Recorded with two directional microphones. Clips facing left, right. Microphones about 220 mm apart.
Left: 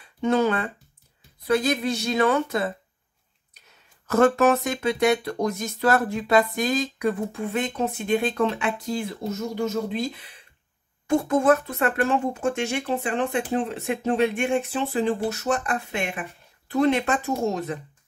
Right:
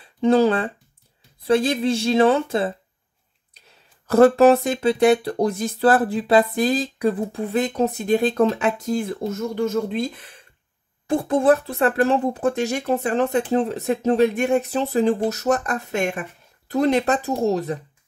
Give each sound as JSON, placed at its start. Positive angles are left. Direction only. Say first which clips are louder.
{"t": 0.0, "sound": "a woman's voice", "louder": "right 5 dB", "side_deg": -30}
{"t": 3.6, "sound": "a sound", "louder": "right 4 dB", "side_deg": -30}
{"t": 4.1, "sound": "speech", "louder": "right 5 dB", "side_deg": -35}
{"t": 11.1, "sound": "speech", "louder": "right 2 dB", "side_deg": -35}